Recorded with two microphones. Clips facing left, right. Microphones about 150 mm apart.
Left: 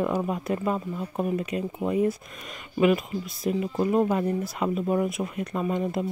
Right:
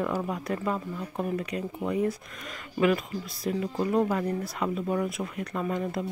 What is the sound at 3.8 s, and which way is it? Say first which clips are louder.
Speech: left 3 dB; 20° left (ahead or behind).